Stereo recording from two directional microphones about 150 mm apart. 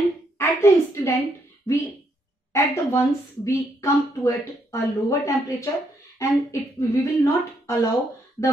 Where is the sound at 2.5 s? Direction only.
20° left (ahead or behind).